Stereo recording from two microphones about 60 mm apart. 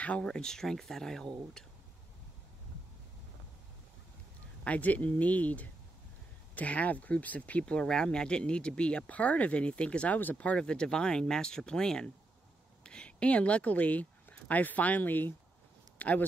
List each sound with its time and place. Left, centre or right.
0.0 s speech: centre
4.6 s speech: left